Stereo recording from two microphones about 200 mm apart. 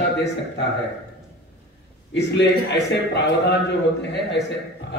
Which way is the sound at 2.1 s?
60° left (ahead or behind).